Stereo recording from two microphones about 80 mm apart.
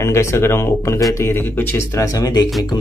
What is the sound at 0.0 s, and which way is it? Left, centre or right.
Speech, left.